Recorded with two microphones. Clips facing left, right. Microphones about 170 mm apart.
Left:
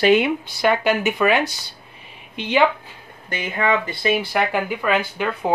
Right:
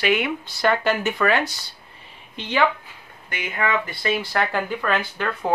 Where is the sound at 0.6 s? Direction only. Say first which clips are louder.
Left 2 dB; 10° left (ahead or behind).